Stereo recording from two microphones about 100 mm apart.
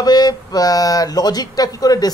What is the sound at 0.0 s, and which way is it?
Speech, 45° left (ahead or behind).